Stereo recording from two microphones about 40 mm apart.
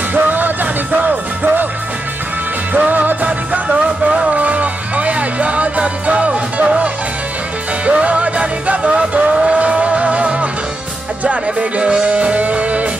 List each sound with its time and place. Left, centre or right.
0.1 s music: right
2.7 s music: right
7.8 s music: right